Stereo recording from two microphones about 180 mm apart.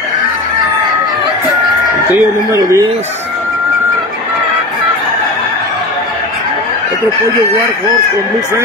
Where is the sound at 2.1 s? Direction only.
15° right (ahead or behind).